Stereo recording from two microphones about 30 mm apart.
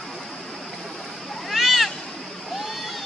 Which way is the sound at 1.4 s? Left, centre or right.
Centre.